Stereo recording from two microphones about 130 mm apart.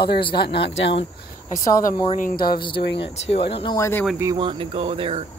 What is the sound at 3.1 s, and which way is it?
Speech, 50° left (ahead or behind).